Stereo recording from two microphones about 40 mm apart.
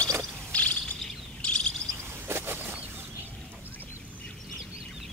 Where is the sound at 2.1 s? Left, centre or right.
Right.